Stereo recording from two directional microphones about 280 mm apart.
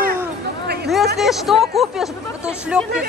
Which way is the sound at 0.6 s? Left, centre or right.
Right.